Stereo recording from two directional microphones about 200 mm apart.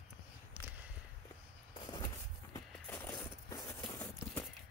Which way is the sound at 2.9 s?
10° left (ahead or behind).